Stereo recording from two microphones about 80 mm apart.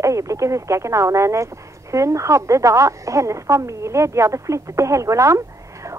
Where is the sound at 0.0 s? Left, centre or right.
Right.